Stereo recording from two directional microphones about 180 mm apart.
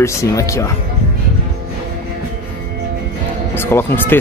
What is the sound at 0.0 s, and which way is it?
Speech, 15° left (ahead or behind).